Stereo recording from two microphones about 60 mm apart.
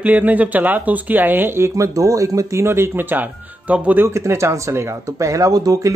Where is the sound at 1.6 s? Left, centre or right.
Right.